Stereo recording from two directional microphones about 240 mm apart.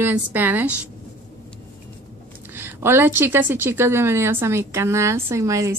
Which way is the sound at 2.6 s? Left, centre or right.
Centre.